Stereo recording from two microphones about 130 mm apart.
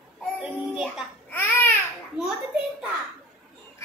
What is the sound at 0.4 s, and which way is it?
Child singing, 5° right (ahead or behind).